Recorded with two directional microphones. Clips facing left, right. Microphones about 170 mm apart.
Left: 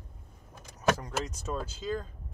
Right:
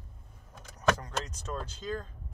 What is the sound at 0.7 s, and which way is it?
Keys jangling, 10° left (ahead or behind).